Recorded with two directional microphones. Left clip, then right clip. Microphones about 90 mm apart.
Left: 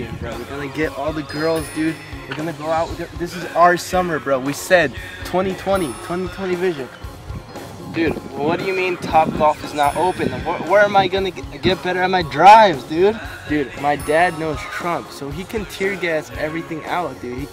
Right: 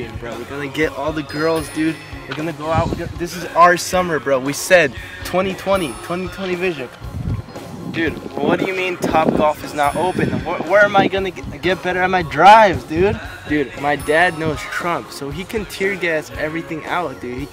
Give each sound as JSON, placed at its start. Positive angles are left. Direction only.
{"t": 0.7, "sound": "speech", "side_deg": -15}
{"t": 1.3, "sound": "speech", "side_deg": -5}
{"t": 3.2, "sound": "speech", "side_deg": -15}
{"t": 7.9, "sound": "speech", "side_deg": -10}